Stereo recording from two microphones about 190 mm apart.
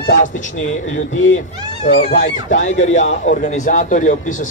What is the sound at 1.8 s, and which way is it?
A man's voice, 40° left (ahead or behind).